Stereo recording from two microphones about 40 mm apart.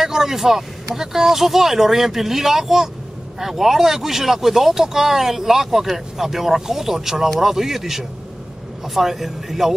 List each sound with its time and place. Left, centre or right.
0.0 s speech: centre